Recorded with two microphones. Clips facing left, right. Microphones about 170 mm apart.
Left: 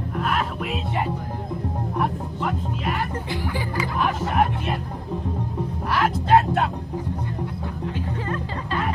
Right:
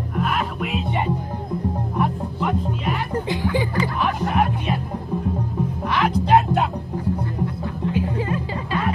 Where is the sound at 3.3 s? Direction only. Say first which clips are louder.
Right 5 dB; 20° right (ahead or behind).